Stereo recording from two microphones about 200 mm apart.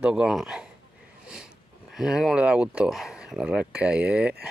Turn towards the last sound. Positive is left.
turn(degrees=-5)  # may be behind; listen again after turning